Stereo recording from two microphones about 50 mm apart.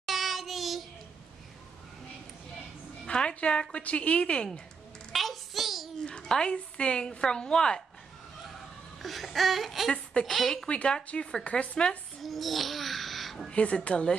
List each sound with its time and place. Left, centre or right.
0.0 s child singing: centre
3.1 s a woman's voice: centre
5.1 s a sound: centre
6.0 s a woman's voice: centre
9.0 s a sound: centre
10.7 s a woman's voice: left
12.2 s babbling: centre
13.5 s a woman's voice: left